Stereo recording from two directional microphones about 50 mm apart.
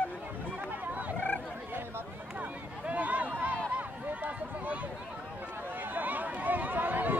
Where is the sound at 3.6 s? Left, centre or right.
Right.